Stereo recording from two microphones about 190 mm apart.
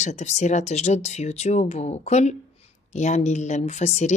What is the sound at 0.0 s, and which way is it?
A woman's voice, 35° left (ahead or behind).